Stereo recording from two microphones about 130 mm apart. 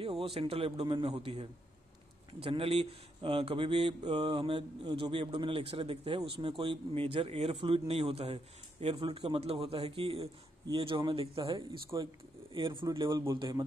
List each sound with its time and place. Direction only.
0.0 s speech: 45° right (ahead or behind)
11.5 s speech: 30° right (ahead or behind)